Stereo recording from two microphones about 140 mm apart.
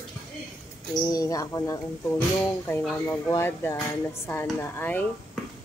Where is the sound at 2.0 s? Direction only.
15° left (ahead or behind).